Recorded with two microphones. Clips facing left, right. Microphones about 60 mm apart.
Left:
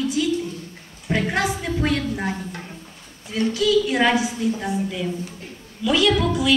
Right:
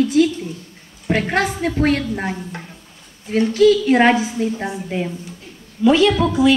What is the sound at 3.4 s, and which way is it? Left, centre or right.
A woman's voice, right.